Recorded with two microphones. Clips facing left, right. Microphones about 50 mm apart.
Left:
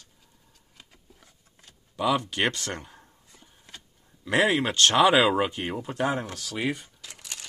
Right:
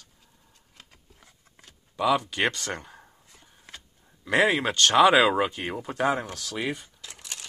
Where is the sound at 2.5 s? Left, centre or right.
Centre.